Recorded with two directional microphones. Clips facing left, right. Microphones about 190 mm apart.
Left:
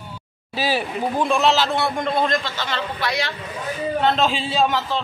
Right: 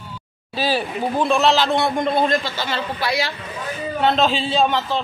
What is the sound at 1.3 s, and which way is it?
A man's voice, 10° left (ahead or behind).